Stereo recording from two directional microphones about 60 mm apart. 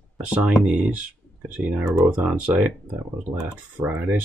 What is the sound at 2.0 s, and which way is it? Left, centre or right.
Speech, centre.